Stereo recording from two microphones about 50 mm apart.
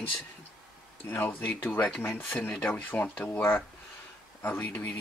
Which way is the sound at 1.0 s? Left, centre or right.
Left.